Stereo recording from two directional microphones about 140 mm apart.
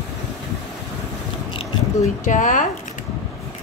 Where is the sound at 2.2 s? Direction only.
65° left (ahead or behind).